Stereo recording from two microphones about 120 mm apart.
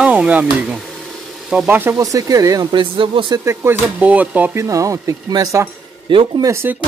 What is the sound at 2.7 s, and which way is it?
Speech, 45° right (ahead or behind).